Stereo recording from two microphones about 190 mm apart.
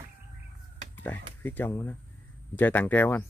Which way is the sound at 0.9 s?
10° left (ahead or behind).